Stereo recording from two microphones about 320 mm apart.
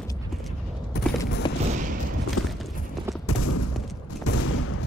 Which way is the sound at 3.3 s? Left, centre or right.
Left.